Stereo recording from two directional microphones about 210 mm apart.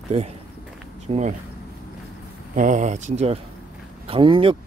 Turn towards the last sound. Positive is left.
turn(degrees=-25)  # may be behind; listen again after turning